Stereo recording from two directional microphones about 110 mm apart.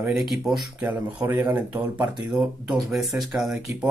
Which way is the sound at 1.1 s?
15° right (ahead or behind).